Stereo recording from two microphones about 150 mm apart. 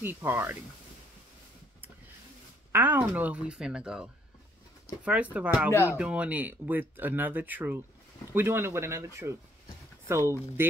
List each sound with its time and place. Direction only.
0.0 s speech: 15° right (ahead or behind)
2.7 s speech: 15° right (ahead or behind)